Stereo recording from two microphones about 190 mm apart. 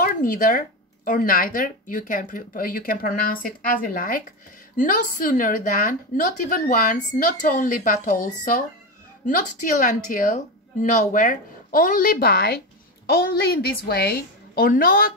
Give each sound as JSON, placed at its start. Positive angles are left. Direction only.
{"t": 0.0, "sound": "speech", "side_deg": 45}